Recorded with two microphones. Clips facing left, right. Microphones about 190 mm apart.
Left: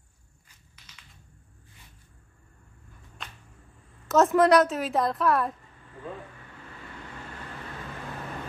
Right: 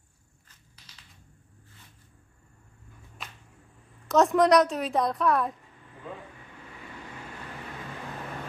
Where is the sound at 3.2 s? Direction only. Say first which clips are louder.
Even; 5° right (ahead or behind).